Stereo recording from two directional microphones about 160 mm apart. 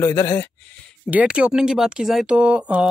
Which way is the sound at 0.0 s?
20° left (ahead or behind).